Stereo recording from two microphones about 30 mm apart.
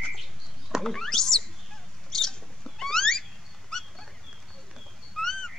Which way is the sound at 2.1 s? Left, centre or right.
Centre.